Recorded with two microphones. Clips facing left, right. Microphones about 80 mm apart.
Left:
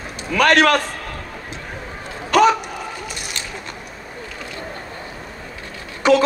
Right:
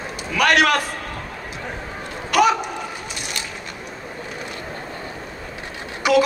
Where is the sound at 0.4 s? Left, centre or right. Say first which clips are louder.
Left 3 dB; centre.